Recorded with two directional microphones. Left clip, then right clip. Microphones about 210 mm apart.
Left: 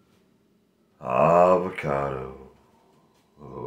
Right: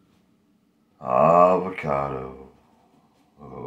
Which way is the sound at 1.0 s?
30° left (ahead or behind).